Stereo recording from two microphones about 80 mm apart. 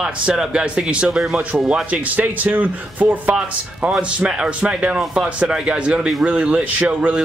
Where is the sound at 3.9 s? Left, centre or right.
Centre.